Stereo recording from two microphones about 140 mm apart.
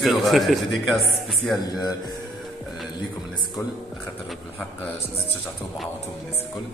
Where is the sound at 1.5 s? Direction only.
25° left (ahead or behind).